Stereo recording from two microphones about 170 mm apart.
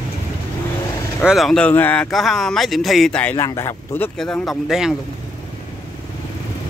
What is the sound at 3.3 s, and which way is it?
Speech, 20° left (ahead or behind).